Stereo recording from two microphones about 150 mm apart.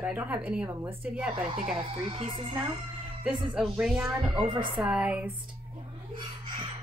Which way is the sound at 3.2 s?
5° right (ahead or behind).